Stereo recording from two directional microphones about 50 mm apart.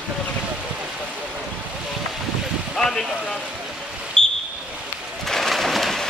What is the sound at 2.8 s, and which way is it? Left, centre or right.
Speech, centre.